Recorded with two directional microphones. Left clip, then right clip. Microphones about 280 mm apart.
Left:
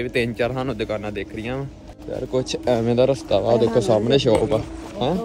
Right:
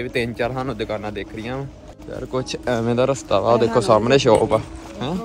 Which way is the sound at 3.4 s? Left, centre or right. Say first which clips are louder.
Right 2 dB; centre.